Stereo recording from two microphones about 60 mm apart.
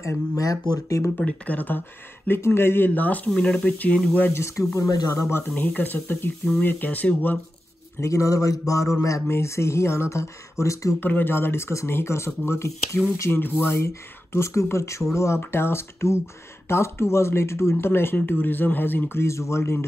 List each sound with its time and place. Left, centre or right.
0.8 s mantra: left
1.1 s speech: left
2.2 s a man's voice: left
2.9 s speech: left
3.3 s speech: centre
3.6 s speech: left
4.3 s speech: left
5.5 s a man's voice: left
8.0 s mantra: left
9.3 s speech: left
11.0 s speech: left
13.3 s a man's voice: left
13.8 s a man's voice: left